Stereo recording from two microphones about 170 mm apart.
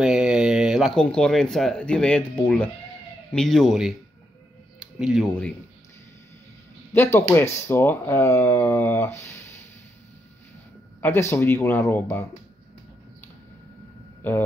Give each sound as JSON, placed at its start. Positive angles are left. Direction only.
{"t": 0.0, "sound": "speech", "side_deg": -5}
{"t": 6.9, "sound": "speech", "side_deg": 15}
{"t": 11.0, "sound": "speech", "side_deg": 15}